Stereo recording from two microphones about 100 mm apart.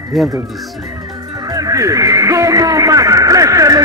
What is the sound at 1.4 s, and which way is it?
Speech, 35° right (ahead or behind).